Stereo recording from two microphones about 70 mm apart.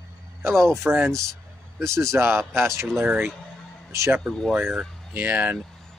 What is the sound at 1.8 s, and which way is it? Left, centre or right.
Speech, right.